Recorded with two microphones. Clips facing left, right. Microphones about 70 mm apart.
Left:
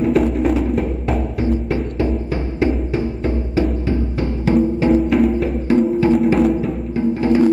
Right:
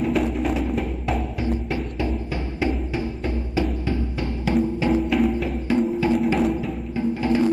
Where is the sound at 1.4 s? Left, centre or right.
Left.